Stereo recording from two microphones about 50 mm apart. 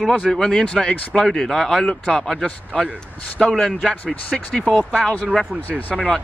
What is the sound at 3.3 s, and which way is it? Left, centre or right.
Speech, centre.